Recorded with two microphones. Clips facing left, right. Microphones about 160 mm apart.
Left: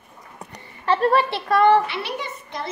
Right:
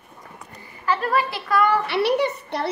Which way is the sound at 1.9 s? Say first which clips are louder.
Right 9 dB; 70° right (ahead or behind).